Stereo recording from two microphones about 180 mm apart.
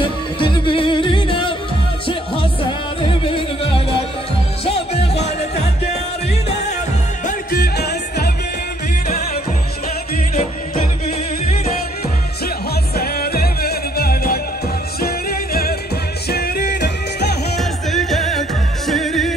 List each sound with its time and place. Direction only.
0.0 s music: 30° left (ahead or behind)
7.2 s music: 60° left (ahead or behind)
12.9 s music: 60° left (ahead or behind)
17.6 s music: centre (ahead or behind)